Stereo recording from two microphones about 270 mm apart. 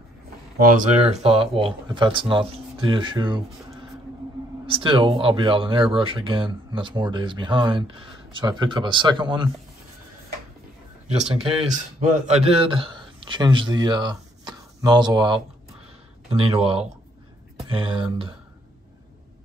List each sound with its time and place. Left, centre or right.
0.7 s speech: right
11.7 s speech: right